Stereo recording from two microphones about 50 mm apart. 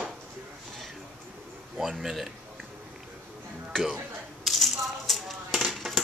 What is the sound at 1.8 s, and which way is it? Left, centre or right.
Speech, centre.